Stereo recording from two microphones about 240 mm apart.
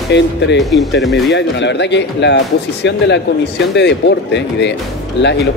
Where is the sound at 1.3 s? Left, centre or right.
Left.